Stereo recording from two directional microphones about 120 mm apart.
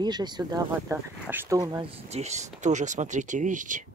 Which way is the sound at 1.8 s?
65° right (ahead or behind).